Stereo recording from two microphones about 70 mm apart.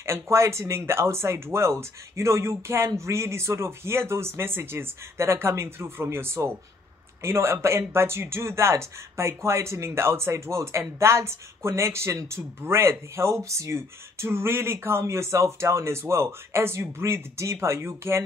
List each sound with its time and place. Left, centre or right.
0.0 s speech: right